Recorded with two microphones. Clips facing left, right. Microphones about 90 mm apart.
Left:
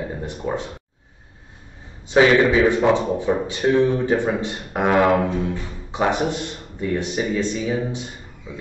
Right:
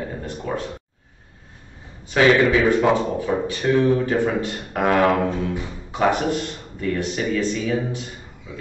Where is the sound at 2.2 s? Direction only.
20° left (ahead or behind).